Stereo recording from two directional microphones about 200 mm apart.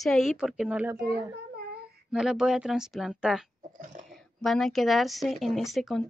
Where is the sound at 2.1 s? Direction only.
5° right (ahead or behind).